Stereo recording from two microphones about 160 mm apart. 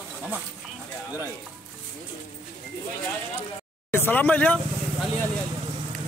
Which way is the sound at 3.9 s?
10° left (ahead or behind).